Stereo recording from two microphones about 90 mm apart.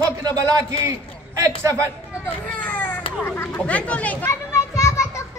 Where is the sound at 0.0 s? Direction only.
40° right (ahead or behind).